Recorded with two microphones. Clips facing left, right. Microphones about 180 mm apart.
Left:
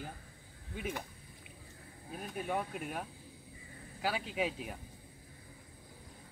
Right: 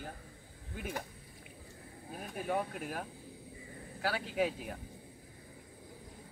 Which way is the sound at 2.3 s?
Centre (ahead or behind).